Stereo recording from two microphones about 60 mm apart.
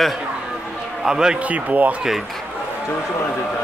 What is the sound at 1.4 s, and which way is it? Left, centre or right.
Speech, right.